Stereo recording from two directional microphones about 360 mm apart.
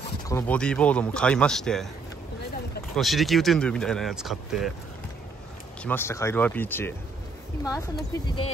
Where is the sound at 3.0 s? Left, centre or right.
Centre.